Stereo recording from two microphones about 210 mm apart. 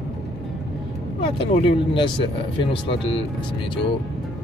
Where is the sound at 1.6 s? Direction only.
20° left (ahead or behind).